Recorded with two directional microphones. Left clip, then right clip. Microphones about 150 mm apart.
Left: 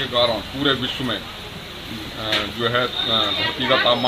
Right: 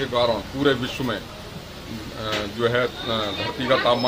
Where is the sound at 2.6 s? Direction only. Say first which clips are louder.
Right 2 dB; 25° right (ahead or behind).